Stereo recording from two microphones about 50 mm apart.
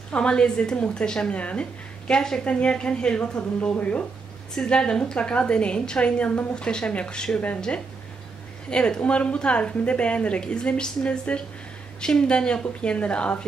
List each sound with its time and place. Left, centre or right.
0.1 s a woman's voice: centre